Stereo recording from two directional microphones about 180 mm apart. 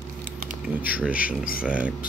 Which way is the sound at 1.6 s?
5° right (ahead or behind).